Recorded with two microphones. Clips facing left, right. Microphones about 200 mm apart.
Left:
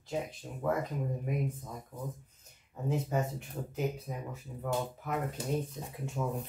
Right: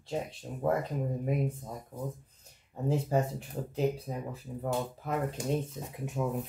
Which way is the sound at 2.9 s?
30° right (ahead or behind).